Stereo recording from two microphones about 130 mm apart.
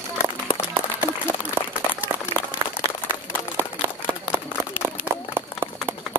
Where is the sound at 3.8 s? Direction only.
15° right (ahead or behind).